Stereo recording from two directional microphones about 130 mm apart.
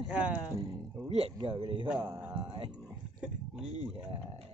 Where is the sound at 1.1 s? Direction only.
45° right (ahead or behind).